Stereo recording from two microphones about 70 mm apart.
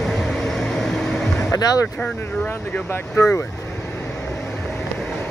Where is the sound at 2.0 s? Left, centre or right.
Centre.